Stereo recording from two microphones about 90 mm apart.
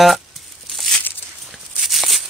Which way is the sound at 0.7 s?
Centre (ahead or behind).